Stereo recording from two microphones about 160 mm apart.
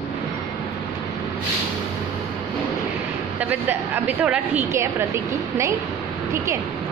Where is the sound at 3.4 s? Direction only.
10° right (ahead or behind).